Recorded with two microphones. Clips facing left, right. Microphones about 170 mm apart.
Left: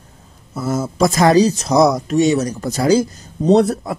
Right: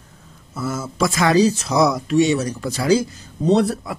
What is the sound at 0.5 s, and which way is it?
Speech, 40° left (ahead or behind).